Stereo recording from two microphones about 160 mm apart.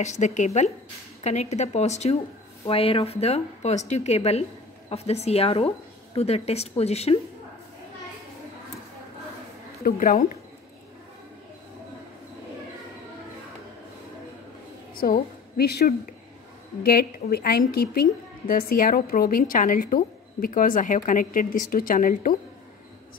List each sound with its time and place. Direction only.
0.0 s a woman's voice: 45° left (ahead or behind)
9.8 s a woman's voice: 60° left (ahead or behind)
15.0 s a woman's voice: 65° left (ahead or behind); by 15.9 s 90° left
16.8 s a woman's voice: 75° left (ahead or behind)
18.5 s a woman's voice: 65° left (ahead or behind)